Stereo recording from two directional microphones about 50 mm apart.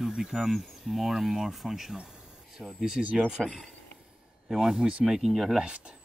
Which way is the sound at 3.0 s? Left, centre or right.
Centre.